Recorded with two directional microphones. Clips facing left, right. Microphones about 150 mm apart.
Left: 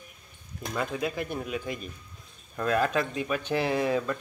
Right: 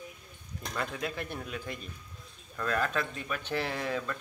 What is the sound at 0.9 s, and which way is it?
Speech, 15° left (ahead or behind).